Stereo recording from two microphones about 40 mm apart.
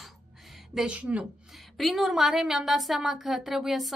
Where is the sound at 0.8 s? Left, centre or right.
Right.